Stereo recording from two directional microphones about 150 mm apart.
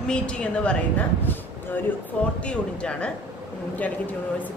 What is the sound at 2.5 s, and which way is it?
Speech, 5° left (ahead or behind).